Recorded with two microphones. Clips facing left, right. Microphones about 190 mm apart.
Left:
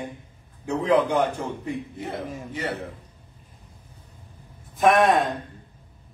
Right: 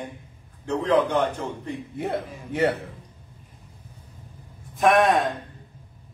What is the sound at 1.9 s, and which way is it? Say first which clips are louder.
Speech: right 3 dB; 60° right (ahead or behind).